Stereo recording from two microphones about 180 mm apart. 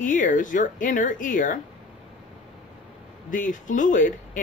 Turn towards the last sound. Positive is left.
turn(degrees=45)  # may be behind; listen again after turning